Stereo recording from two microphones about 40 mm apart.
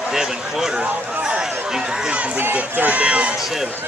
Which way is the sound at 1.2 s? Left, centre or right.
Centre.